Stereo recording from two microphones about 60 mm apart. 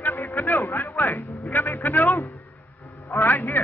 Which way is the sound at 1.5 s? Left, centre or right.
Left.